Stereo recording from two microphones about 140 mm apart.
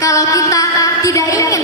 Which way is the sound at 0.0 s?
25° left (ahead or behind).